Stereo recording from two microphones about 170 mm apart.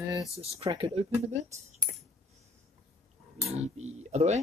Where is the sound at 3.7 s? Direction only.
40° right (ahead or behind).